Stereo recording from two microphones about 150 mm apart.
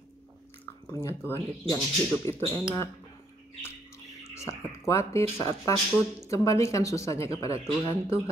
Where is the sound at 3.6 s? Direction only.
20° left (ahead or behind).